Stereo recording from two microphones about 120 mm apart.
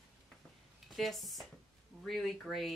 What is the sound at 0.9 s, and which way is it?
Speech, centre (ahead or behind).